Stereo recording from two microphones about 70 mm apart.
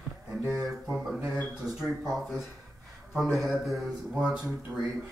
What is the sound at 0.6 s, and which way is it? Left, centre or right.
Speech, centre.